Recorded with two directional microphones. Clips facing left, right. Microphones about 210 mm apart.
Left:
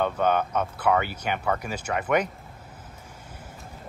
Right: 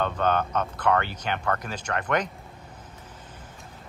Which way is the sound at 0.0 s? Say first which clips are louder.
Left 1 dB; 10° left (ahead or behind).